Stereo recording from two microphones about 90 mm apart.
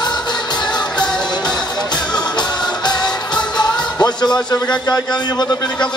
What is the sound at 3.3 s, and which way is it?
Music, 50° left (ahead or behind).